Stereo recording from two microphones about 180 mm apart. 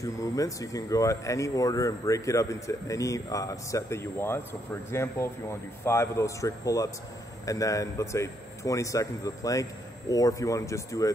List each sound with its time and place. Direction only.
0.0 s a man's voice: 20° left (ahead or behind)